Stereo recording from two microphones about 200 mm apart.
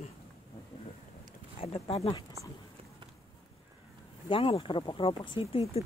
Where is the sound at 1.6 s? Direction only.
30° left (ahead or behind).